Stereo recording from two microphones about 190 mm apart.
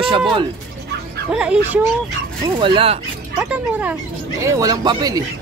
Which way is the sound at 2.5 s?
25° right (ahead or behind).